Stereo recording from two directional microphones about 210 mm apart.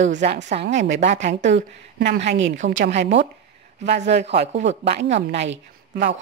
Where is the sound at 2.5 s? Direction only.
35° right (ahead or behind).